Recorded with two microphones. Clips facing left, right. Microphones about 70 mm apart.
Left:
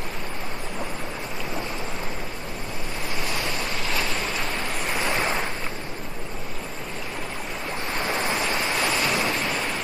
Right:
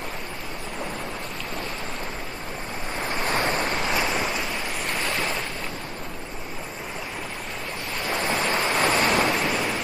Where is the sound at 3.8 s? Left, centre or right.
Centre.